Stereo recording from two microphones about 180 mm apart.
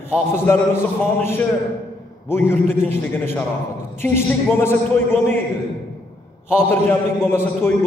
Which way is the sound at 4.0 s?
15° left (ahead or behind).